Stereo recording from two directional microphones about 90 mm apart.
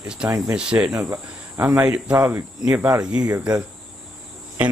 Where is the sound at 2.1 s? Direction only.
25° right (ahead or behind).